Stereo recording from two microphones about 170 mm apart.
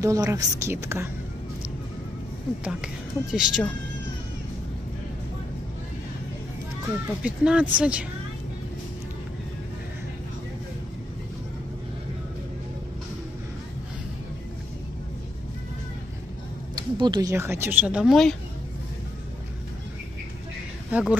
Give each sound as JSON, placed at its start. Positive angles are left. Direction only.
{"t": 0.0, "sound": "speech", "side_deg": -20}
{"t": 2.6, "sound": "a woman's voice", "side_deg": -5}
{"t": 7.2, "sound": "speech", "side_deg": -5}
{"t": 16.7, "sound": "speech", "side_deg": -25}
{"t": 20.9, "sound": "speech", "side_deg": -10}